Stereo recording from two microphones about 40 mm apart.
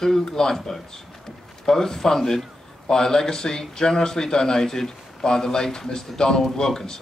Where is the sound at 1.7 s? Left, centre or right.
Centre.